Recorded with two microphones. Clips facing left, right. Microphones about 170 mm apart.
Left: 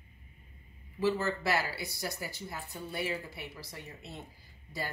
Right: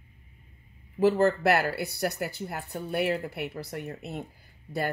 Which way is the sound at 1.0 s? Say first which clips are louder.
Right 8 dB; 55° right (ahead or behind).